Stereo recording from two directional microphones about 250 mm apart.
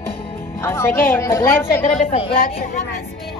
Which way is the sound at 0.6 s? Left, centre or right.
Centre.